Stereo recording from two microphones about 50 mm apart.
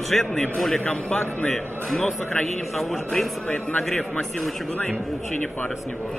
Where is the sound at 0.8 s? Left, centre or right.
Left.